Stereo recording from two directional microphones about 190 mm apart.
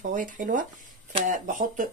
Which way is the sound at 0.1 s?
45° right (ahead or behind).